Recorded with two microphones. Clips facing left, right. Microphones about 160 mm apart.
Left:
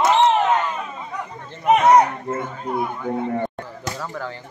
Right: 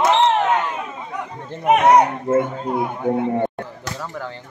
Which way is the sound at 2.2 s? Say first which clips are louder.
Right 7 dB; 25° right (ahead or behind).